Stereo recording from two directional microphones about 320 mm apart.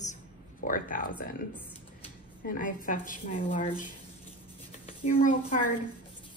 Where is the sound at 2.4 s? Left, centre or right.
Left.